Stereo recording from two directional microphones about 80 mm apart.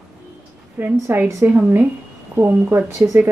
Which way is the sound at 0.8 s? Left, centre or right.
Right.